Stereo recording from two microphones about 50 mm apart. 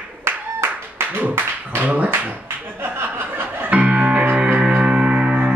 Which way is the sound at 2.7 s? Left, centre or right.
Right.